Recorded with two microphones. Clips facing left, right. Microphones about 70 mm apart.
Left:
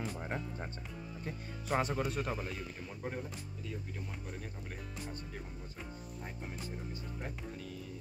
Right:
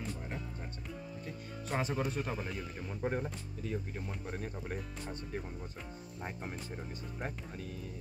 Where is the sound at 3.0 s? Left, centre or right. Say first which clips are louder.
Right 6 dB; right.